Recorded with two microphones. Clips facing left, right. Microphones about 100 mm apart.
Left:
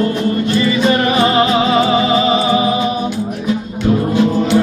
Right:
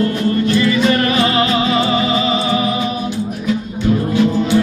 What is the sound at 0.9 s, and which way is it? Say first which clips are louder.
Music: left 2 dB; 25° left (ahead or behind).